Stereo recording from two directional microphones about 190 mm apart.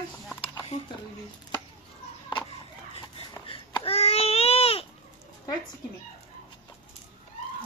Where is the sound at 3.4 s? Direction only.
25° left (ahead or behind).